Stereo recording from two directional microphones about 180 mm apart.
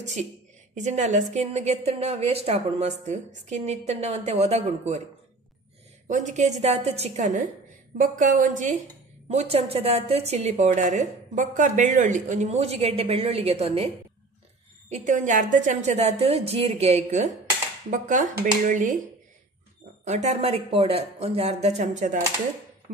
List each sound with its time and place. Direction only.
0.0 s a woman's voice: 40° right (ahead or behind)
6.0 s a woman's voice: 40° right (ahead or behind)
20.1 s a woman's voice: 40° right (ahead or behind)